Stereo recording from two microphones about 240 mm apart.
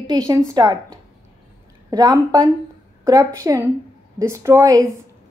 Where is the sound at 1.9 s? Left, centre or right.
Centre.